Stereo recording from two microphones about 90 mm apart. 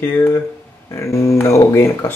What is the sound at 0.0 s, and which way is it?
Speech, 25° left (ahead or behind).